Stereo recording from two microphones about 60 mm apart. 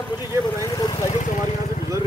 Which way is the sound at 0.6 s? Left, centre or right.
Left.